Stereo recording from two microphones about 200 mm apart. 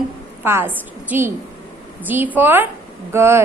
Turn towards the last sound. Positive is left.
turn(degrees=-10)  # may be behind; listen again after turning